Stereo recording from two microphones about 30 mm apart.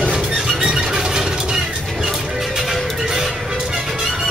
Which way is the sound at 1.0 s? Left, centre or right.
Right.